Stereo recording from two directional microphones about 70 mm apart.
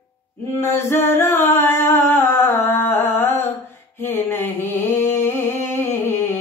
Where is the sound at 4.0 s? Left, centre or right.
Left.